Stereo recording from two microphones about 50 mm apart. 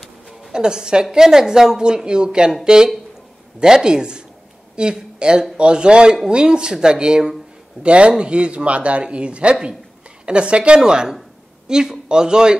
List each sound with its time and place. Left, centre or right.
0.3 s a woman's voice: centre